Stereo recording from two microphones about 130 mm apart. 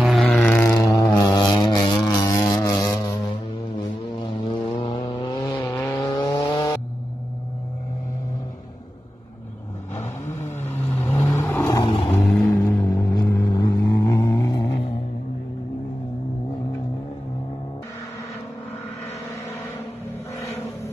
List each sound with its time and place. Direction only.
0.2 s a sound: 10° left (ahead or behind)
0.8 s a sound: 25° left (ahead or behind)
4.2 s vehicle: 40° left (ahead or behind)
5.5 s vehicle: 15° left (ahead or behind)
10.6 s vehicle: 15° left (ahead or behind)
11.9 s vehicle: 50° left (ahead or behind)
12.2 s vehicle: centre (ahead or behind)
12.7 s vehicle: 25° left (ahead or behind)